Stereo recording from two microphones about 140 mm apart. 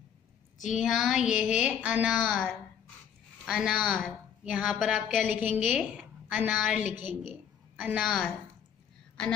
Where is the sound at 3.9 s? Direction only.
5° right (ahead or behind).